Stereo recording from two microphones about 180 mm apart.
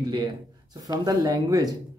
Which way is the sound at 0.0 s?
20° right (ahead or behind).